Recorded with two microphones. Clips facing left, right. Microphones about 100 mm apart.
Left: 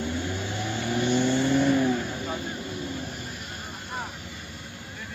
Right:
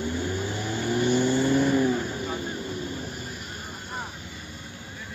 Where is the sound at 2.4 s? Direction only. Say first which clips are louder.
Right 1 dB; 40° right (ahead or behind).